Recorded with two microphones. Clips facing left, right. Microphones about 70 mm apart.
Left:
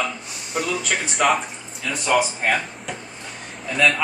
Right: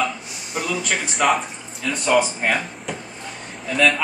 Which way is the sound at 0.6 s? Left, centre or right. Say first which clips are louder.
Even; centre.